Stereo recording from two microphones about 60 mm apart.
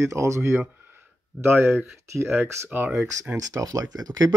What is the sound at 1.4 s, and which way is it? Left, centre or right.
Speech, right.